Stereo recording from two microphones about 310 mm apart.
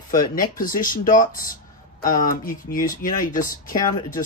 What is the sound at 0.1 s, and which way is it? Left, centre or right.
Speech, left.